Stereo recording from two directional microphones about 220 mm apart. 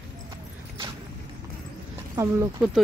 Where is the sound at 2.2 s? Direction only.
15° right (ahead or behind).